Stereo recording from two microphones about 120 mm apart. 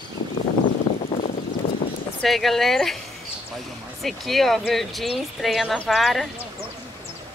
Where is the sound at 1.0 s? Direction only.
70° left (ahead or behind).